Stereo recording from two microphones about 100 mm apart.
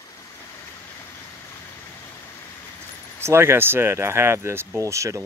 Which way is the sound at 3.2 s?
25° right (ahead or behind).